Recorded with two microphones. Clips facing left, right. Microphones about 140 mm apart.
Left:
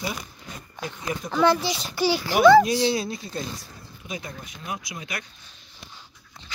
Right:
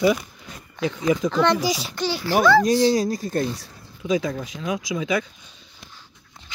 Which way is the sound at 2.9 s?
40° right (ahead or behind).